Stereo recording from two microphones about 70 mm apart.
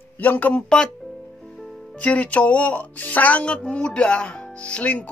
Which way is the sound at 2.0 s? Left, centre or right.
Left.